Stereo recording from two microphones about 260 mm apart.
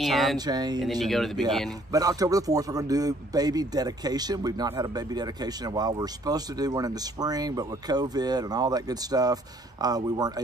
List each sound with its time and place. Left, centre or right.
0.0 s speech: centre
0.5 s a man's voice: centre
1.0 s speech: centre
1.9 s a man's voice: centre